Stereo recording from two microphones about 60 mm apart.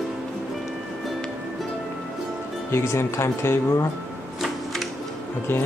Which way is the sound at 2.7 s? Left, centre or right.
Left.